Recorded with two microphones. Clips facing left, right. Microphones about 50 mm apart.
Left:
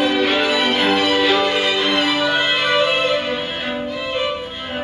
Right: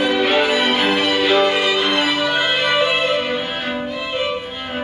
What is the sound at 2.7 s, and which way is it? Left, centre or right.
Music, centre.